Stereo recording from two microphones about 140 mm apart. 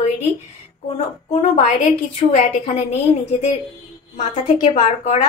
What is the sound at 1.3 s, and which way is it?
Speech, 50° left (ahead or behind).